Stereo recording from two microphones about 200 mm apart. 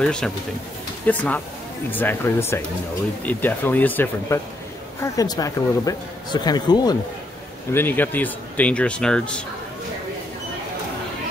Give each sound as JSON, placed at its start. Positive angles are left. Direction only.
{"t": 0.0, "sound": "speech", "side_deg": 5}
{"t": 7.7, "sound": "speech", "side_deg": 10}